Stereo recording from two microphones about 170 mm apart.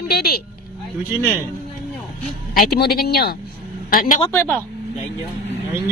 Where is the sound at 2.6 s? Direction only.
70° left (ahead or behind).